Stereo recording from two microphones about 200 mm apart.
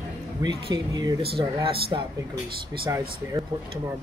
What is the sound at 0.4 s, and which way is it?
Speech, 20° right (ahead or behind).